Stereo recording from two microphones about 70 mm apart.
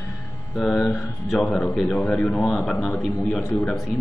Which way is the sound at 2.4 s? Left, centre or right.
Centre.